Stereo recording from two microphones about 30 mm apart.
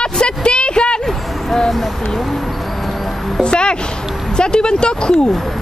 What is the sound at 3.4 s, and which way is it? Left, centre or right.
Speech, left.